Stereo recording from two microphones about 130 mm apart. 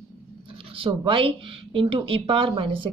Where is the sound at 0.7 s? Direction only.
45° right (ahead or behind).